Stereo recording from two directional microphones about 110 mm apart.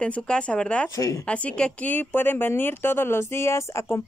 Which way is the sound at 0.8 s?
30° left (ahead or behind).